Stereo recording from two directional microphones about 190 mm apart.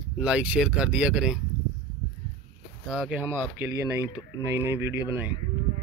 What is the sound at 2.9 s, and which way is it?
Speech, 5° right (ahead or behind).